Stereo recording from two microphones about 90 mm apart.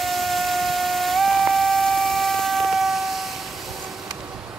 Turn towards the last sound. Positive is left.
turn(degrees=0)  # may be behind; listen again after turning